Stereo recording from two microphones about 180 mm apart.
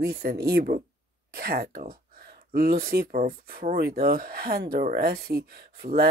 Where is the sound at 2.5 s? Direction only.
60° right (ahead or behind).